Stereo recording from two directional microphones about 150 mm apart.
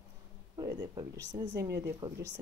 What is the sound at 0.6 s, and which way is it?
Speech, 25° right (ahead or behind).